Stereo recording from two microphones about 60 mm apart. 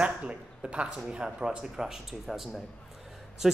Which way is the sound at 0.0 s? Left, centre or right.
Centre.